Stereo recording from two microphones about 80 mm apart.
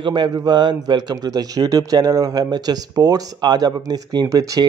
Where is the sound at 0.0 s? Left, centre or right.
Right.